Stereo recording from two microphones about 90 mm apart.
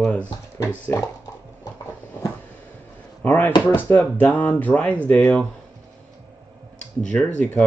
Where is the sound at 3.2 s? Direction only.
20° left (ahead or behind).